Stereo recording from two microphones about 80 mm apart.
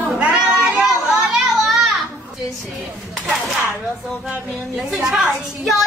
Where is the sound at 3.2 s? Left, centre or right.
Centre.